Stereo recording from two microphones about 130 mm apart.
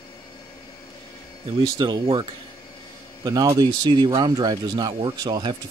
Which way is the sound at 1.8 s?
35° right (ahead or behind).